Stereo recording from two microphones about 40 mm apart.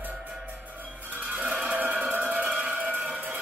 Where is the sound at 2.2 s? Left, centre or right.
Right.